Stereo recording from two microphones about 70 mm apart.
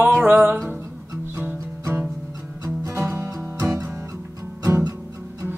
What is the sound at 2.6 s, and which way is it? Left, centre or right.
Music, right.